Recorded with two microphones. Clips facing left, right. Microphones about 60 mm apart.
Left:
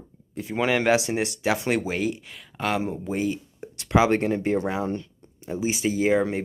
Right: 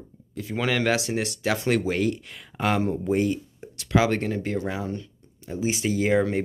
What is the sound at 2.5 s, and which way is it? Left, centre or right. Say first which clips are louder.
Speech: right 2 dB; centre.